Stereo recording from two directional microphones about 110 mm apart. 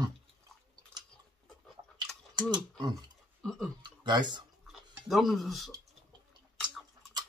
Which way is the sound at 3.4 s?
5° left (ahead or behind).